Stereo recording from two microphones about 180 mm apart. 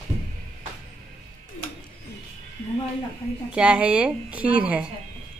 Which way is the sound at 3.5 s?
5° right (ahead or behind).